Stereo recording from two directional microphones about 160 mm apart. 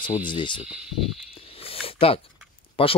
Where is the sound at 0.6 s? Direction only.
5° right (ahead or behind).